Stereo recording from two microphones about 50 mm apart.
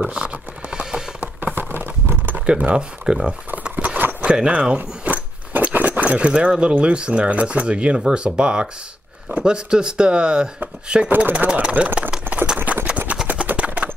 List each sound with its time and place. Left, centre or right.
0.0 s horse: right
1.2 s patter: right
2.3 s speech: right
3.7 s horse: right
4.4 s a sound: right
6.8 s speech: right
11.1 s speech: right
11.3 s speech: right
12.7 s a sound: right